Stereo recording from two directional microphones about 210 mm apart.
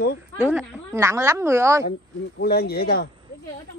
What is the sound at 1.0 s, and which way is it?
Speech, 15° right (ahead or behind).